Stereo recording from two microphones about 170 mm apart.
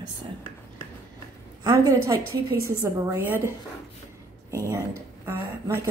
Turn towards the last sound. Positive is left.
turn(degrees=-15)  # may be behind; listen again after turning